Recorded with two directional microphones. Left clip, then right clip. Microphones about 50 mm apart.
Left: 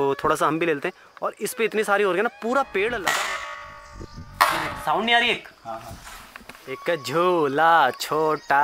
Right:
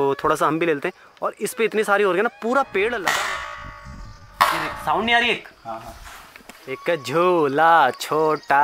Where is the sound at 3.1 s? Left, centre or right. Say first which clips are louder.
Right 2 dB; centre.